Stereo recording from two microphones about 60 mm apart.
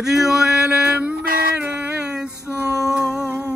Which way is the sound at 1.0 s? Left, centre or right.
Right.